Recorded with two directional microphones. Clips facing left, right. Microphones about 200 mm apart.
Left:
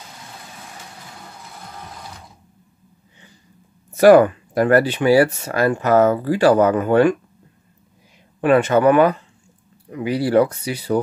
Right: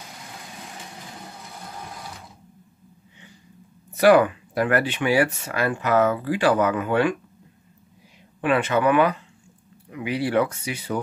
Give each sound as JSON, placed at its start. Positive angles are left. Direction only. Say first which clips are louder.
{"t": 3.9, "sound": "speech", "louder": "left 5 dB", "side_deg": 45}
{"t": 8.4, "sound": "speech", "louder": "left 6 dB", "side_deg": 45}